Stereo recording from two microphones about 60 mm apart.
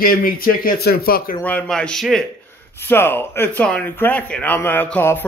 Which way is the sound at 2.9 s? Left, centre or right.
Left.